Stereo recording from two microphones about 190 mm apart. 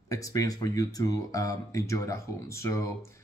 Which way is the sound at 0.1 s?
15° left (ahead or behind).